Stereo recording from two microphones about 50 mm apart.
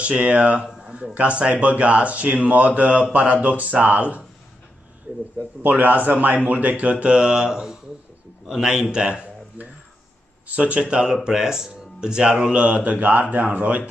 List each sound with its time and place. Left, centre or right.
0.0 s speech: right
5.6 s speech: right; by 9.2 s centre
9.6 s speech: right